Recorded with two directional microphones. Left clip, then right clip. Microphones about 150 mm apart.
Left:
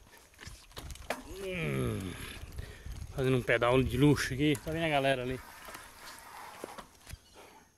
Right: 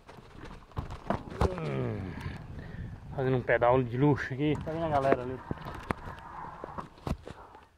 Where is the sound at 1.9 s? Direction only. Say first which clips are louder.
Even; 45° left (ahead or behind).